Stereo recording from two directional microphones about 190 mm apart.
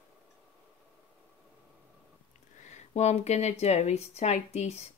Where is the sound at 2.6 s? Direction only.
35° left (ahead or behind).